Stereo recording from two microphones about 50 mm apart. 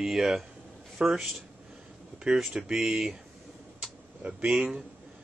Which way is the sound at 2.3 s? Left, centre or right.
Centre.